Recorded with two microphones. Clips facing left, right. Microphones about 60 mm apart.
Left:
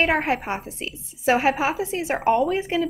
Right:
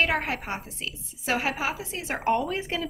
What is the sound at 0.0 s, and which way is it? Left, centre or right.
A woman's voice, left.